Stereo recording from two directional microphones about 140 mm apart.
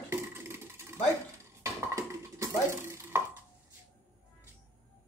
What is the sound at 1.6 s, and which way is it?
Dishes, 20° right (ahead or behind).